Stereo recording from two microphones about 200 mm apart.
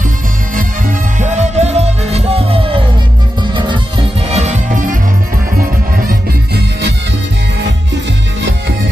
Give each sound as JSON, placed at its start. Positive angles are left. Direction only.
{"t": 0.6, "sound": "music", "side_deg": -40}
{"t": 4.3, "sound": "music", "side_deg": -35}